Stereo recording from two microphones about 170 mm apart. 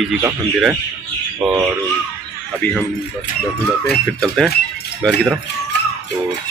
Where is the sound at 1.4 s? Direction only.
Centre (ahead or behind).